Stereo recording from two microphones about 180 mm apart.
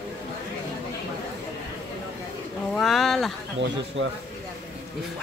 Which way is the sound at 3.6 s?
90° right.